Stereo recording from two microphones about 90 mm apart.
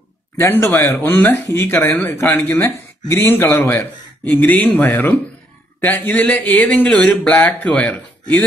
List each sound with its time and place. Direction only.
0.4 s speech: 25° left (ahead or behind)
5.8 s speech: 20° left (ahead or behind)